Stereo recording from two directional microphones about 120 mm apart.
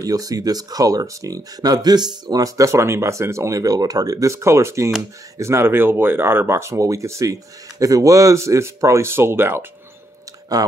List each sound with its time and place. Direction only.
0.0 s speech: 30° right (ahead or behind)
10.5 s speech: 30° right (ahead or behind)